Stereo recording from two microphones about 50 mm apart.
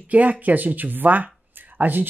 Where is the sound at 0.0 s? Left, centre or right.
Right.